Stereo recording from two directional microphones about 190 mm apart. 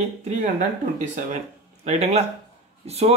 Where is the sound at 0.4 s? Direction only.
40° right (ahead or behind).